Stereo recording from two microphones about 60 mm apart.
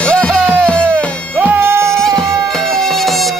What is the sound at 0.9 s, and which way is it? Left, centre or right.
Music, right.